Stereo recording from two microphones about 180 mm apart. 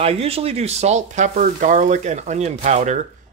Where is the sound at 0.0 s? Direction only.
35° right (ahead or behind).